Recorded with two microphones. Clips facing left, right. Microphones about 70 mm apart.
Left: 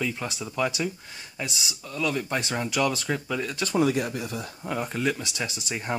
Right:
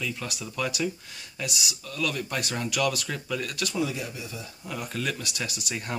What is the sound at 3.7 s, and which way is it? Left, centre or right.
Speech, left.